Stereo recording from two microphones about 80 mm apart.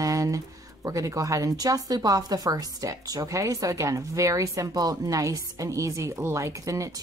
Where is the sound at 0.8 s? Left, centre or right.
Right.